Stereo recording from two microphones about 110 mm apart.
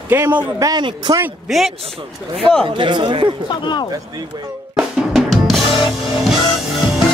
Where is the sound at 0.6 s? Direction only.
35° right (ahead or behind).